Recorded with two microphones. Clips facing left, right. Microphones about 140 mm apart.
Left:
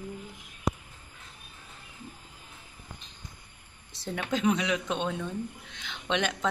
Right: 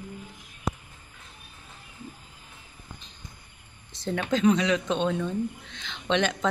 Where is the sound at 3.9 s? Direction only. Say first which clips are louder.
Right 4 dB; 5° left (ahead or behind).